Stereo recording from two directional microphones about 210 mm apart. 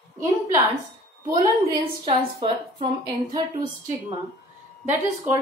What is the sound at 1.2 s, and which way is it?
A woman's voice, 20° right (ahead or behind).